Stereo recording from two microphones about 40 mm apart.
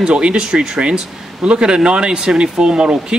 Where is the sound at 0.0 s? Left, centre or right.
Right.